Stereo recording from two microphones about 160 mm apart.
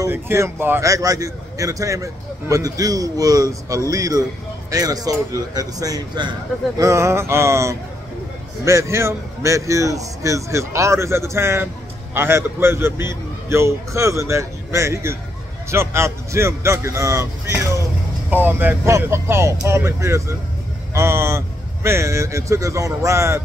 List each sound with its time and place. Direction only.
0.0 s a man's voice: 15° right (ahead or behind)